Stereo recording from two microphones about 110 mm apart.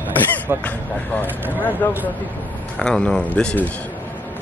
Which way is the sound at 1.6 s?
15° left (ahead or behind).